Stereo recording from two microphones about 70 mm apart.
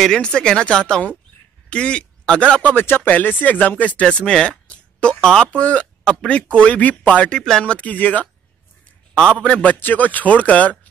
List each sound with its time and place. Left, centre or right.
0.0 s a man's voice: centre